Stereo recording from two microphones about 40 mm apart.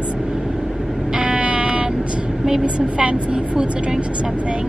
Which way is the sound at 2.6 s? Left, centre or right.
Right.